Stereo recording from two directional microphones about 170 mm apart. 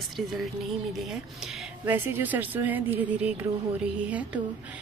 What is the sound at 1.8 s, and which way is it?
Speech, 10° right (ahead or behind).